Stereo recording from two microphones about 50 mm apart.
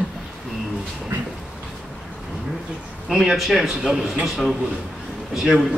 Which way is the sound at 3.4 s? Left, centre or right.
Centre.